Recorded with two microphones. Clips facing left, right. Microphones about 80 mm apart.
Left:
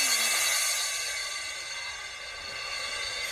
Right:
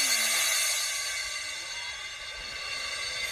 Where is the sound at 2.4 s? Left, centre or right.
Left.